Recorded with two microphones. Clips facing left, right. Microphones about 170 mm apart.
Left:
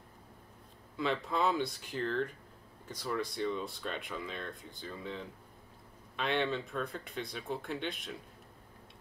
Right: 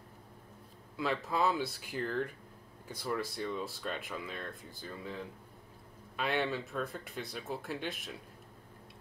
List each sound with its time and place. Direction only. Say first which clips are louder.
0.9 s speech: even; 5° right (ahead or behind)